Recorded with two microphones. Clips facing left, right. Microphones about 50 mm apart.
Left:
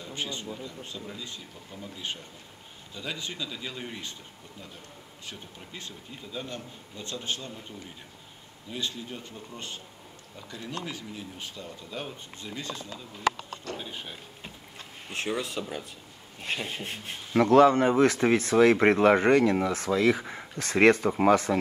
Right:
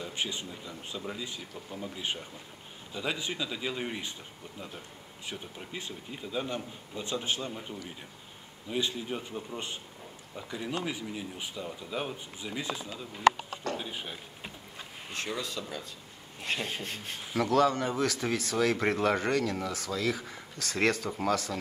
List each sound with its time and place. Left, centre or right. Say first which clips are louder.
0.0 s speech: even; centre
5.2 s speech: right 3 dB; centre
13.7 s a sound: right 1 dB; centre
15.3 s speech: left 4 dB; left
16.3 s speech: even; centre
17.4 s speech: left 7 dB; left